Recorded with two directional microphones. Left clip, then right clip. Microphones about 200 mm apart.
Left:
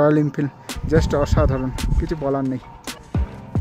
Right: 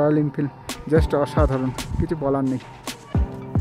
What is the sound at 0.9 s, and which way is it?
Speech, 10° right (ahead or behind).